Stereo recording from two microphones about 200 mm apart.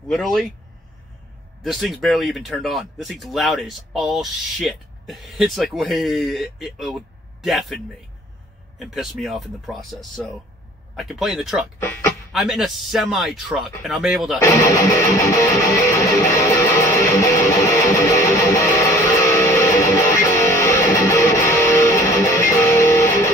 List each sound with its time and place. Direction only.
0.1 s speech: centre (ahead or behind)
1.6 s speech: centre (ahead or behind)
14.4 s music: 15° left (ahead or behind)